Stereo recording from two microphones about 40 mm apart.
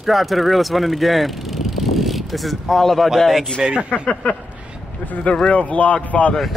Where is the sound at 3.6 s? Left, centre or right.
Centre.